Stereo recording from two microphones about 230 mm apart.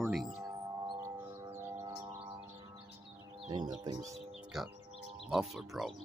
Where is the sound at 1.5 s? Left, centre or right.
Centre.